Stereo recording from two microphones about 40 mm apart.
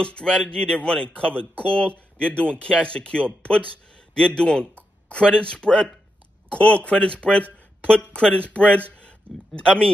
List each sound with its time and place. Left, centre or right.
0.0 s speech: left